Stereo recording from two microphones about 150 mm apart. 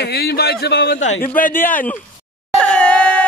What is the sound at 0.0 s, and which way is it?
A man's voice, 90° left.